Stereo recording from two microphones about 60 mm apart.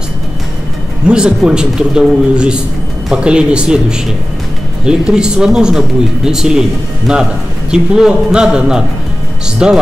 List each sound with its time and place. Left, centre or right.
1.0 s speech: centre